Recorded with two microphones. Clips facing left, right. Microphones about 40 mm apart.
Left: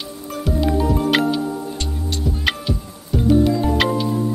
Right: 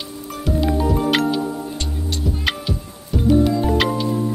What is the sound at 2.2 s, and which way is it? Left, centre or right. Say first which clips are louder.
Music: left 2 dB; centre.